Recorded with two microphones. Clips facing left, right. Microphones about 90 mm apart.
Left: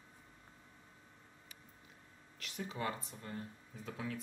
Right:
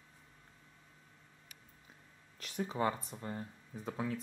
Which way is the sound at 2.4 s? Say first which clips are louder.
Right 6 dB; 35° right (ahead or behind).